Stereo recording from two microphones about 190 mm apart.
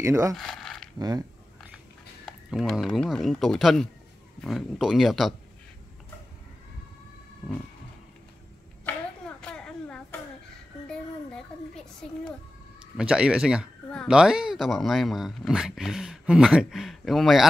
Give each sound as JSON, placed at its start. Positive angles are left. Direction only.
{"t": 0.0, "sound": "speech", "side_deg": -15}
{"t": 0.3, "sound": "a sound", "side_deg": 0}
{"t": 0.9, "sound": "speech", "side_deg": -20}
{"t": 2.5, "sound": "speech", "side_deg": 0}
{"t": 9.4, "sound": "a sound", "side_deg": 5}
{"t": 10.9, "sound": "music", "side_deg": 5}
{"t": 12.9, "sound": "speech", "side_deg": -5}